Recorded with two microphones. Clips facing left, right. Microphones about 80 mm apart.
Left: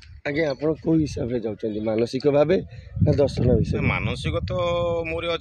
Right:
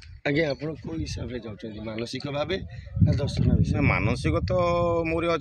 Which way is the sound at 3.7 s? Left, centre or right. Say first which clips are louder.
Right 1 dB; centre.